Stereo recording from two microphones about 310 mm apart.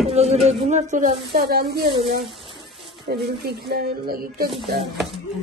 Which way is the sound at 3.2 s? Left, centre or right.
Right.